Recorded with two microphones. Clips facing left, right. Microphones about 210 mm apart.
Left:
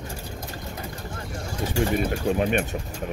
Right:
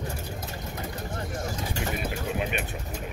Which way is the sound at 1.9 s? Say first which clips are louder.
Left 7 dB; 45° left (ahead or behind).